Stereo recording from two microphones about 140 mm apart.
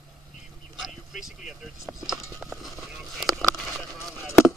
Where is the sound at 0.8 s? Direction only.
Centre (ahead or behind).